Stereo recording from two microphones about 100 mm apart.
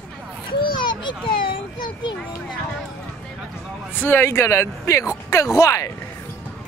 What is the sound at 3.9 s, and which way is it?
Speech, 20° left (ahead or behind).